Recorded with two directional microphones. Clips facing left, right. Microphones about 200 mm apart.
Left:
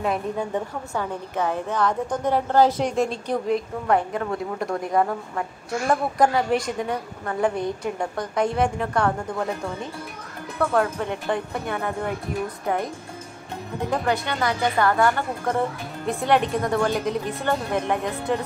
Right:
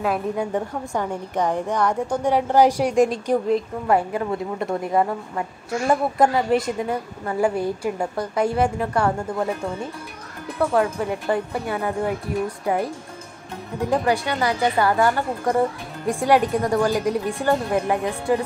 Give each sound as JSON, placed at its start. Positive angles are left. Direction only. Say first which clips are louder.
{"t": 0.0, "sound": "a woman's voice", "louder": "right 2 dB", "side_deg": -5}
{"t": 0.9, "sound": "a woman's voice", "louder": "right 2 dB", "side_deg": -15}
{"t": 10.6, "sound": "a woman's voice", "louder": "right 2 dB", "side_deg": -10}
{"t": 14.0, "sound": "a woman's voice", "louder": "right 2 dB", "side_deg": -10}